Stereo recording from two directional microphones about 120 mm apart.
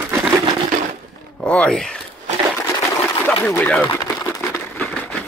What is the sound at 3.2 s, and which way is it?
Speech, 15° left (ahead or behind).